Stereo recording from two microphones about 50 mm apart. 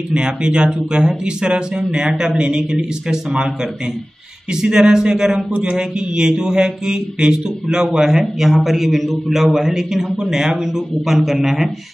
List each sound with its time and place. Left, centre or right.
0.1 s a man's voice: centre